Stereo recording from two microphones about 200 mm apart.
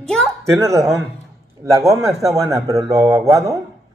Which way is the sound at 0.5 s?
15° right (ahead or behind).